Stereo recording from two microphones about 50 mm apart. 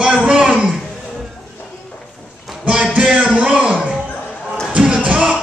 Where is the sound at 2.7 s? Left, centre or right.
Right.